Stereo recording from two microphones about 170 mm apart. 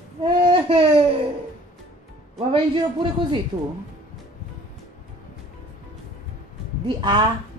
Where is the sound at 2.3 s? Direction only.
30° right (ahead or behind).